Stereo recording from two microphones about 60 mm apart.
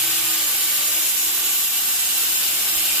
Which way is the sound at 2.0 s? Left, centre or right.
Right.